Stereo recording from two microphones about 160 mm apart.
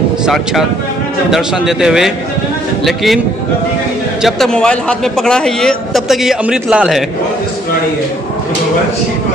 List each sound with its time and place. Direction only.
0.2 s a man's voice: centre (ahead or behind)
4.2 s a man's voice: 5° left (ahead or behind)